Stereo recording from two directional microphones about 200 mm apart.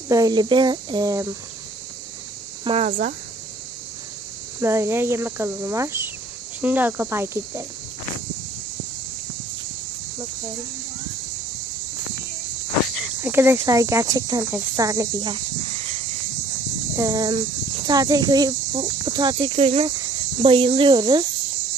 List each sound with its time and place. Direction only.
0.1 s speech: 20° right (ahead or behind)
2.6 s speech: 30° right (ahead or behind)
2.9 s speech: 45° right (ahead or behind)
4.6 s speech: 15° right (ahead or behind)
13.2 s speech: 10° right (ahead or behind); by 16.0 s 30° right (ahead or behind)
16.9 s speech: 15° right (ahead or behind)